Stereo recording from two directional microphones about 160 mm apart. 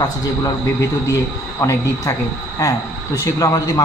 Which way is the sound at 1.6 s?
15° left (ahead or behind).